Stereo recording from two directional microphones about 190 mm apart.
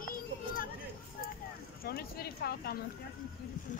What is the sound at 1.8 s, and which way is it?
Speech, 55° left (ahead or behind).